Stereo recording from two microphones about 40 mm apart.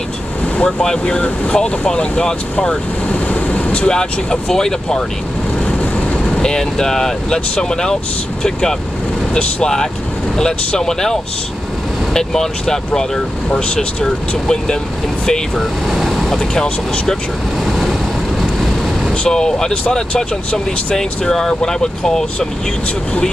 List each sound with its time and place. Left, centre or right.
0.7 s speech: left
3.1 s speech: left; by 4.7 s centre
5.8 s train: left
6.3 s speech: centre
15.2 s speech: centre
15.9 s vehicle: centre
16.3 s speech: centre
16.6 s speech: left
17.6 s vehicle: centre
19.2 s speech: centre
20.2 s speech: centre